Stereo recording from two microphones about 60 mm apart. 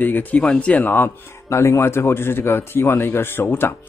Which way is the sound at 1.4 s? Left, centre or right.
Left.